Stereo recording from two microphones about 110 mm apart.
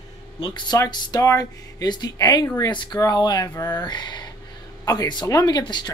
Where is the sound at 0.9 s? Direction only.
35° left (ahead or behind).